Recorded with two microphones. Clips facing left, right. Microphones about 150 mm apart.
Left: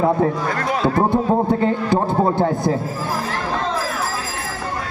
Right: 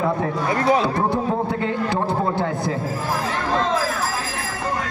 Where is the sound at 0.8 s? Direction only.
45° left (ahead or behind).